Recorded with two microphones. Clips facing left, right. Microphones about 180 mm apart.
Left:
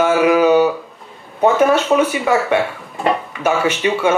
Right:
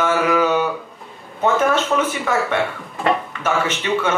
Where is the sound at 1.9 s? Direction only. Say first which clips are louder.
Left 5 dB; 25° left (ahead or behind).